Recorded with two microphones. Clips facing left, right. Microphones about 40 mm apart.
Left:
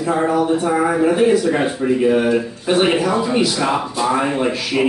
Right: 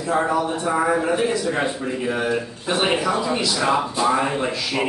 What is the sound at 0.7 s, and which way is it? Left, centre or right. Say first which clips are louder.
Speech: left 3 dB; centre.